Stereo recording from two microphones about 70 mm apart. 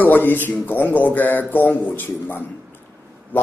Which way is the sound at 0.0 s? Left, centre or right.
Left.